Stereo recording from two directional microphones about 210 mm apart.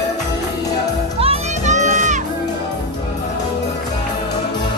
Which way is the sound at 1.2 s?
30° right (ahead or behind).